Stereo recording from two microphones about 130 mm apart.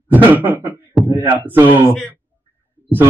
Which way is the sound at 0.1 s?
15° right (ahead or behind).